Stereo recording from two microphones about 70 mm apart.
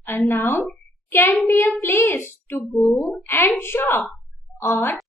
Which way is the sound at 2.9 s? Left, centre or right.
Left.